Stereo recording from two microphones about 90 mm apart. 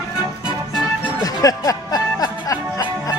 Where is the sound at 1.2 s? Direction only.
40° left (ahead or behind).